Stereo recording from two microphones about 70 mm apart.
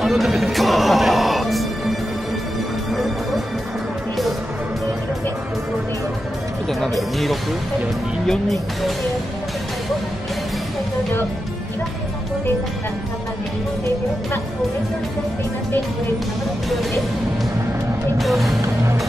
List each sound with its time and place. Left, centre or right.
0.0 s music: centre
6.7 s speech: centre
18.1 s music: centre